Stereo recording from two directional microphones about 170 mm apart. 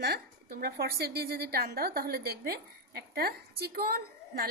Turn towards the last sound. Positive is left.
turn(degrees=-65)  # may be behind; listen again after turning